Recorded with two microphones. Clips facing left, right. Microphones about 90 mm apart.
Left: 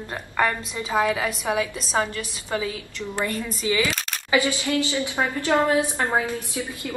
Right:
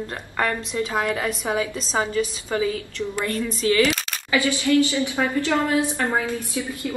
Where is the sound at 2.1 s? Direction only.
Centre (ahead or behind).